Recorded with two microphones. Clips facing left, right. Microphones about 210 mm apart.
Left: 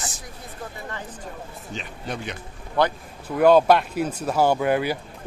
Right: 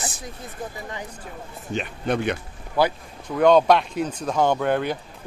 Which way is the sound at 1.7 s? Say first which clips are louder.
Right 8 dB; 60° right (ahead or behind).